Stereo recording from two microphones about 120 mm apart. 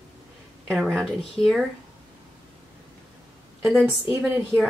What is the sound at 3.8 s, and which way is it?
Speech, 10° right (ahead or behind).